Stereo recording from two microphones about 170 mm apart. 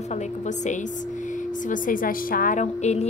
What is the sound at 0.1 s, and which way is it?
A woman's voice, 45° left (ahead or behind).